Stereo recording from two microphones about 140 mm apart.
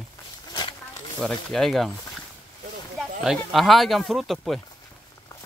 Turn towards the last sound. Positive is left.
turn(degrees=0)  # may be behind; listen again after turning